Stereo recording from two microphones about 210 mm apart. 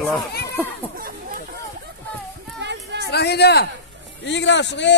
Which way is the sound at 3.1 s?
50° left (ahead or behind).